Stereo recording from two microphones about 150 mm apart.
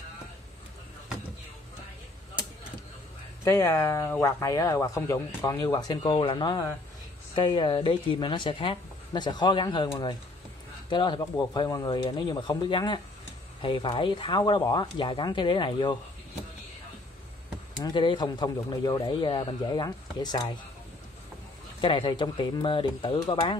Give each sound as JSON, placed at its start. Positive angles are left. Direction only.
{"t": 3.4, "sound": "a woman's voice", "side_deg": 15}
{"t": 17.7, "sound": "speech", "side_deg": 30}
{"t": 21.8, "sound": "a woman's voice", "side_deg": 35}